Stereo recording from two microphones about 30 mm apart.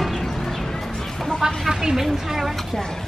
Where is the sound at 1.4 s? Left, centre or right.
Right.